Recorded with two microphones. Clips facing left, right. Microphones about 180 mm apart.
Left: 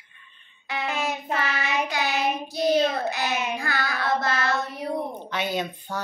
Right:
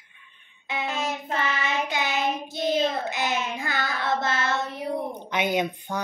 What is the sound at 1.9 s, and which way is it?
Child singing, 20° right (ahead or behind).